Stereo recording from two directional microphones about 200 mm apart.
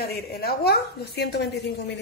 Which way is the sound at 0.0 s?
50° left (ahead or behind).